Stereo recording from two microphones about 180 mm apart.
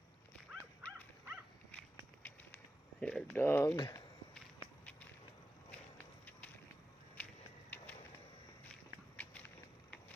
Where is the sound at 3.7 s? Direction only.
25° left (ahead or behind).